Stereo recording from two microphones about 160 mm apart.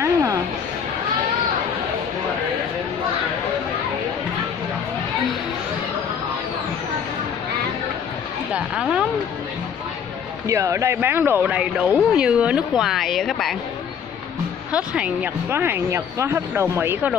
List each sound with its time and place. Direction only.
0.0 s a sound: 20° right (ahead or behind)
8.5 s a woman's voice: 5° right (ahead or behind)
10.4 s speech: 20° right (ahead or behind); by 13.6 s centre (ahead or behind)
14.7 s speech: 5° right (ahead or behind)